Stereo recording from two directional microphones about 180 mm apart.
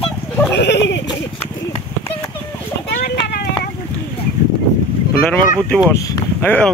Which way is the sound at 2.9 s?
60° left (ahead or behind).